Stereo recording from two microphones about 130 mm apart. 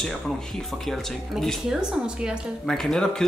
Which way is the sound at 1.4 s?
5° right (ahead or behind).